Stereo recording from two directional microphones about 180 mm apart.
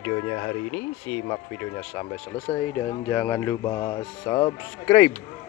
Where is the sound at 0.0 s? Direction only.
15° left (ahead or behind).